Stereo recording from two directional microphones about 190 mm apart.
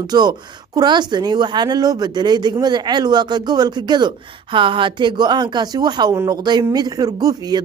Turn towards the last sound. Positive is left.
turn(degrees=-20)  # may be behind; listen again after turning